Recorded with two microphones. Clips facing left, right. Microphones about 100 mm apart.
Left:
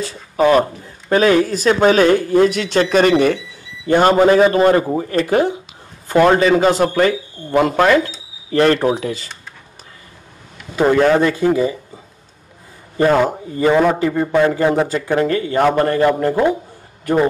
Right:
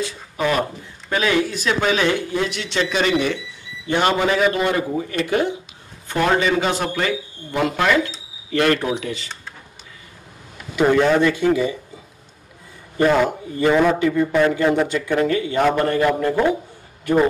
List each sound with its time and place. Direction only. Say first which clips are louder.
0.0 s speech: left 7 dB; 35° left (ahead or behind)
10.8 s speech: left 3 dB; 35° left (ahead or behind)
12.9 s speech: left 3 dB; 35° left (ahead or behind)